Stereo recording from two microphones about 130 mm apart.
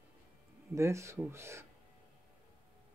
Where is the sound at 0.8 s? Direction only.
20° right (ahead or behind).